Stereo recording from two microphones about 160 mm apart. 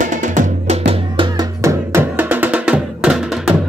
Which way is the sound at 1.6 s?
15° right (ahead or behind).